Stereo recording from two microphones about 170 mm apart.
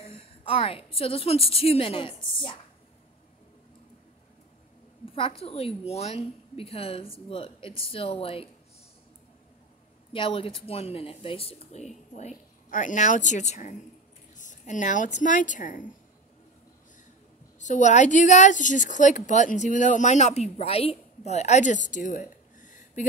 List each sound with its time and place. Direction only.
0.0 s a woman's voice: 30° left (ahead or behind)
5.0 s a woman's voice: 30° left (ahead or behind)
10.1 s a woman's voice: 30° left (ahead or behind)
14.3 s a sound: 45° left (ahead or behind)
15.1 s a woman's voice: 50° left (ahead or behind)
17.6 s a woman's voice: 45° left (ahead or behind)